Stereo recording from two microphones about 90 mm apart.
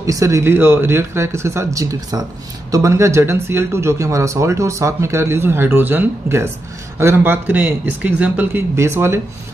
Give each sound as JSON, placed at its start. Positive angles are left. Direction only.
{"t": 0.0, "sound": "speech", "side_deg": -35}
{"t": 8.7, "sound": "speech", "side_deg": -30}